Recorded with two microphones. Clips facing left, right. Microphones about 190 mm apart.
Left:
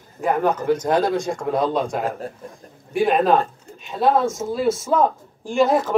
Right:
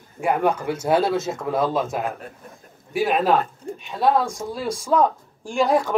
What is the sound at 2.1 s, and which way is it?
Speech, 35° left (ahead or behind).